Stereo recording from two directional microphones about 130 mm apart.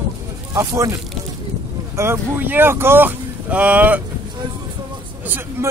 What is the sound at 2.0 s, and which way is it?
Speech, 15° right (ahead or behind).